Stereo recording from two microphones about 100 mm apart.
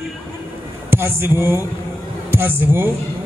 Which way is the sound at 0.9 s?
20° right (ahead or behind).